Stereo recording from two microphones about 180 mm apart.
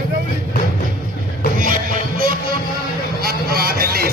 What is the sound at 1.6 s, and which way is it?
Music, 50° right (ahead or behind).